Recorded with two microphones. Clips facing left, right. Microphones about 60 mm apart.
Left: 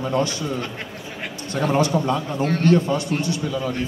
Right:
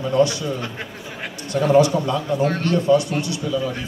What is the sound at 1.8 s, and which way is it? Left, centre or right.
Speech, left.